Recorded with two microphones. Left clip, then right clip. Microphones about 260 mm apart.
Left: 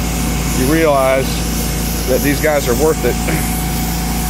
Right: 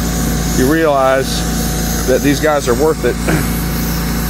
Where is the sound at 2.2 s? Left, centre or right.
Centre.